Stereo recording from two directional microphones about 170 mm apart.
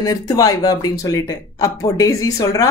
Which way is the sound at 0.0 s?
20° left (ahead or behind).